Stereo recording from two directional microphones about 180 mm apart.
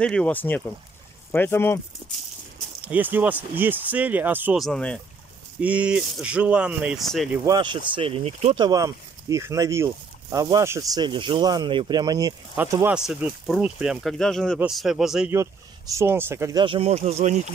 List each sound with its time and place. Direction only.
0.0 s speech: 5° left (ahead or behind)
2.8 s speech: 10° right (ahead or behind)
4.6 s speech: 5° left (ahead or behind)
5.6 s speech: 5° right (ahead or behind)
7.4 s speech: 25° right (ahead or behind)
8.5 s speech: 20° right (ahead or behind)
12.9 s speech: 5° right (ahead or behind)
15.9 s speech: 15° right (ahead or behind); by 17.4 s 40° right (ahead or behind)